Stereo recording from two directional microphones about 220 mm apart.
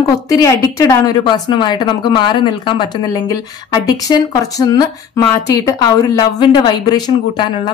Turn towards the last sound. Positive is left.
turn(degrees=20)  # may be behind; listen again after turning